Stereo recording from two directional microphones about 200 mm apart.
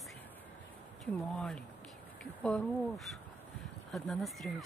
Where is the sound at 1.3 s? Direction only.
5° left (ahead or behind).